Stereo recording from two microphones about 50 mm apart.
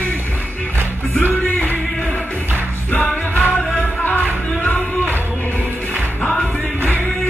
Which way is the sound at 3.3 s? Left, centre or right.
Left.